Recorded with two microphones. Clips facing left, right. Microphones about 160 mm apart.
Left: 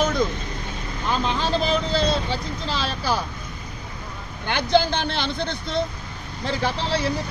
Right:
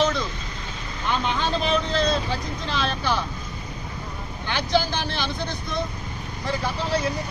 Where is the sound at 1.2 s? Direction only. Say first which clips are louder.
Left 3 dB; 35° left (ahead or behind).